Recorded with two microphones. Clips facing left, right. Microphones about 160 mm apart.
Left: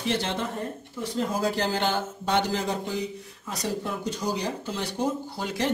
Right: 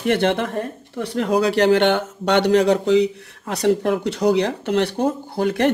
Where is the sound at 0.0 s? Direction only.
60° right (ahead or behind).